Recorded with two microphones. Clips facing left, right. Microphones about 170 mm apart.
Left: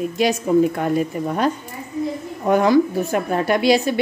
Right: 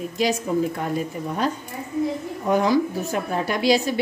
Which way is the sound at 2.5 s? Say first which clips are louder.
Left 4 dB; 60° left (ahead or behind).